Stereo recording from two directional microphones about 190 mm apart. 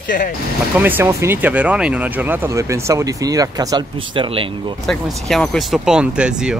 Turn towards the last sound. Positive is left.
turn(degrees=-5)  # may be behind; listen again after turning